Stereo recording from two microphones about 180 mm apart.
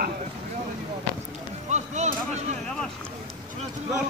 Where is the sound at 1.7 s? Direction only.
40° right (ahead or behind).